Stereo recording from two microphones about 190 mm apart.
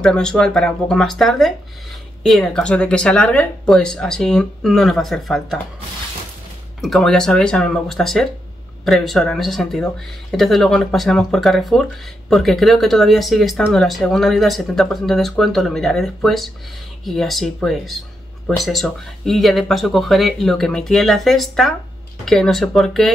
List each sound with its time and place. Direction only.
0.0 s speech: 5° left (ahead or behind)
6.8 s speech: centre (ahead or behind)